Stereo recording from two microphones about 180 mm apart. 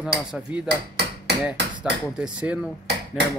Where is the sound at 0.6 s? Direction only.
60° right (ahead or behind).